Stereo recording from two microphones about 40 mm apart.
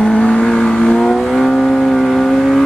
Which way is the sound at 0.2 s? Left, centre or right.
Left.